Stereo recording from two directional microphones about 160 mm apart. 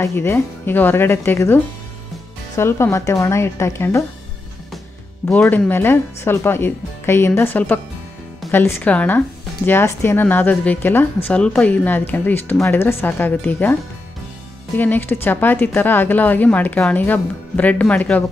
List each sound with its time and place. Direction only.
0.0 s a woman's voice: 15° left (ahead or behind)
5.4 s a woman's voice: 15° left (ahead or behind)
14.8 s a woman's voice: 10° left (ahead or behind)